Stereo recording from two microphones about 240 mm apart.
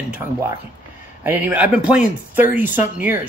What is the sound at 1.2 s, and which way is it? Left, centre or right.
Speech, centre.